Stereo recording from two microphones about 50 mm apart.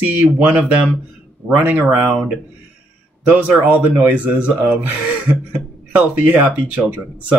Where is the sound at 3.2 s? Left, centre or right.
Right.